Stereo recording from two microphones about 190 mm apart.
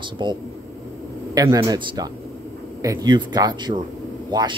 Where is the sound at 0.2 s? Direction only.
25° right (ahead or behind).